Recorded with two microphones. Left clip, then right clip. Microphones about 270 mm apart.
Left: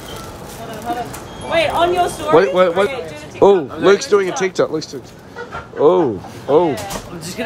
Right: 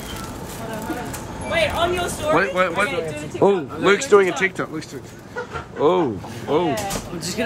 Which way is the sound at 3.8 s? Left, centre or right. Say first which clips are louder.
Left 2 dB; centre.